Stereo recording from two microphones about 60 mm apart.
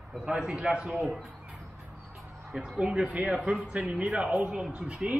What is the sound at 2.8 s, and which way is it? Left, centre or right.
Speech, centre.